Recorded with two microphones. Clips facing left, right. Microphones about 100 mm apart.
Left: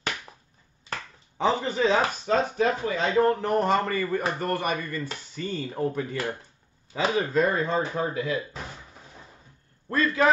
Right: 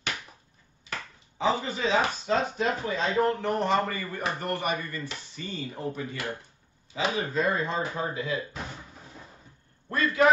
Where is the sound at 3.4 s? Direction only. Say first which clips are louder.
Left 2 dB; 40° left (ahead or behind).